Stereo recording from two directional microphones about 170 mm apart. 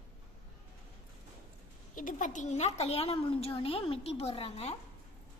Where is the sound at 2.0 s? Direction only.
50° left (ahead or behind); by 4.8 s 35° left (ahead or behind).